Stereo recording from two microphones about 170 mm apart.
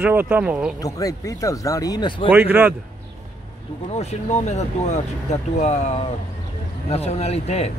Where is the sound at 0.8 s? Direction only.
20° left (ahead or behind).